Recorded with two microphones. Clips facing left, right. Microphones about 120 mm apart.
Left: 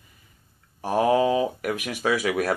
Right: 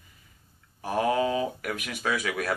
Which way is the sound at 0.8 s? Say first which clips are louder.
Left 5 dB; 40° left (ahead or behind).